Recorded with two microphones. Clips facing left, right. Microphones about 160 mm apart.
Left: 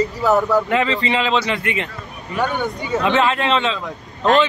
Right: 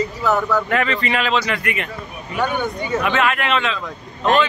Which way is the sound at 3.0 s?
25° left (ahead or behind).